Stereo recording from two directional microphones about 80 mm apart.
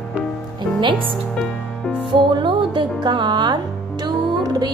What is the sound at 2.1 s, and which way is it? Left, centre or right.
Music, right.